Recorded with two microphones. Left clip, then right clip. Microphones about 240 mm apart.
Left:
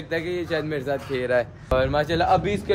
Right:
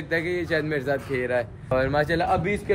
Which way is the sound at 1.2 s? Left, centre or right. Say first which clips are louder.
Left 3 dB; left.